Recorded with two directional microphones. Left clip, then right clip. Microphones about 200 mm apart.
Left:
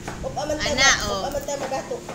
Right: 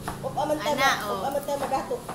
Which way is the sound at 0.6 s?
30° left (ahead or behind).